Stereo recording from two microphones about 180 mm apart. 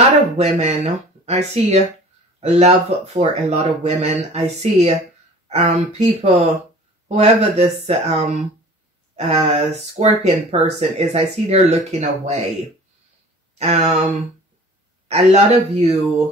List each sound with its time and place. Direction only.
0.4 s speech: 35° right (ahead or behind)
13.6 s speech: 35° right (ahead or behind)
15.0 s speech: 35° right (ahead or behind)